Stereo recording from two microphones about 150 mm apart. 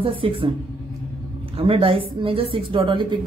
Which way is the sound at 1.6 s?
40° right (ahead or behind).